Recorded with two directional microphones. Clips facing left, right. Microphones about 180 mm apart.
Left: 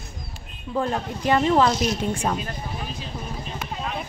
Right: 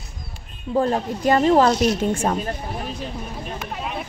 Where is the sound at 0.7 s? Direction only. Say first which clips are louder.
Right 5 dB; 40° right (ahead or behind).